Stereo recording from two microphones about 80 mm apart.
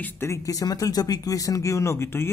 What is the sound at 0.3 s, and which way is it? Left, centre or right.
Speech, left.